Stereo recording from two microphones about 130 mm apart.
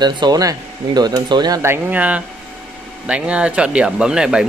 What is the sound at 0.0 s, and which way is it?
Speech, 30° right (ahead or behind).